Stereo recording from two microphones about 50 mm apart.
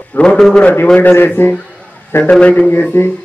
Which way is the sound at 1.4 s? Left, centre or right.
Left.